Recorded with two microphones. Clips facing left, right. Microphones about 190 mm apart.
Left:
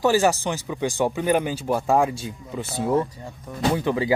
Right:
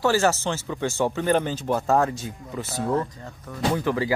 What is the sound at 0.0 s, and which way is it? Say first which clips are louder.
Speech: left 2 dB; 15° left (ahead or behind).